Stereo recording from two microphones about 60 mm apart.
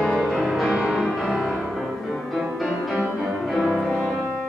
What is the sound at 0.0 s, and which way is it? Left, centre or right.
Music, centre.